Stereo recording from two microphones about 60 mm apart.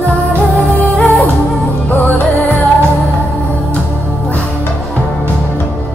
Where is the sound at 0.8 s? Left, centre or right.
Left.